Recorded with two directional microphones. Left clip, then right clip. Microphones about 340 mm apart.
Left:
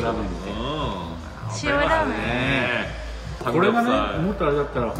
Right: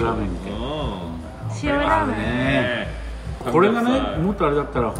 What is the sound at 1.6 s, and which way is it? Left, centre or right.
Speech, centre.